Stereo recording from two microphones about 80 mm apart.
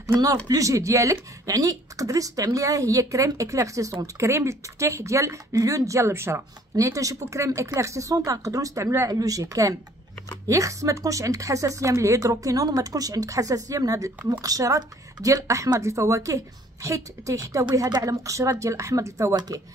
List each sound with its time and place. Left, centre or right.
0.5 s speech: right
8.8 s speech: right
9.1 s speech: right
19.3 s speech: right